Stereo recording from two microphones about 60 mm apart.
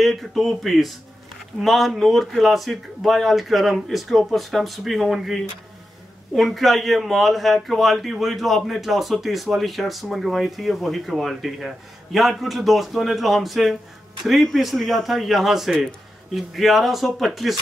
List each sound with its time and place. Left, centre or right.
0.0 s a man's voice: centre